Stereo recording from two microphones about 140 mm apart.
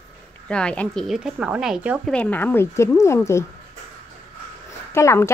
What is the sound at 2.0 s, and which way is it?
Speech, 10° left (ahead or behind).